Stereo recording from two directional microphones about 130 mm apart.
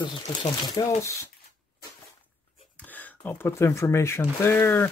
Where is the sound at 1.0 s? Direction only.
20° left (ahead or behind).